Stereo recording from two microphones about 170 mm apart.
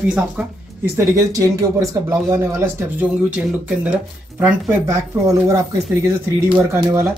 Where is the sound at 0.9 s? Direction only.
20° right (ahead or behind).